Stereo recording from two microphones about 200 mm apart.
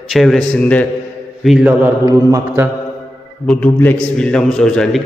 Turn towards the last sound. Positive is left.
turn(degrees=5)  # may be behind; listen again after turning